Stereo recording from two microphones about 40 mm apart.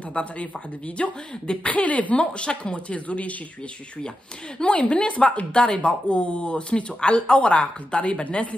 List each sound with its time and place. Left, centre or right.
0.1 s a woman's voice: left
4.6 s speech: left